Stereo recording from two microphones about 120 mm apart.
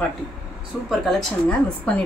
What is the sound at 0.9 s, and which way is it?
A woman's voice, centre (ahead or behind).